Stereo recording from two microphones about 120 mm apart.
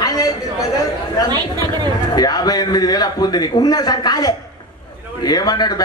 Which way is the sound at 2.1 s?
35° left (ahead or behind).